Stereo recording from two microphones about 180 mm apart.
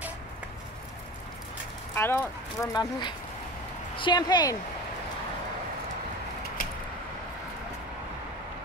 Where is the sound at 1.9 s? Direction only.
15° left (ahead or behind).